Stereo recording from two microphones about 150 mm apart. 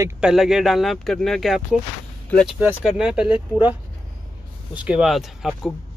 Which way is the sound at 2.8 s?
5° right (ahead or behind).